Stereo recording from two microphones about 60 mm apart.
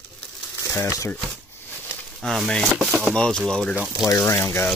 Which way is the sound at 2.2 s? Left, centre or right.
Centre.